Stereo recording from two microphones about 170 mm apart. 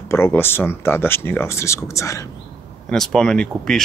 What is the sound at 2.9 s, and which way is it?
Speech, 5° left (ahead or behind).